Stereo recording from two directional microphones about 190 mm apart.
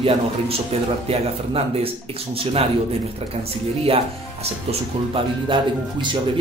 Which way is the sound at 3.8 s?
30° right (ahead or behind).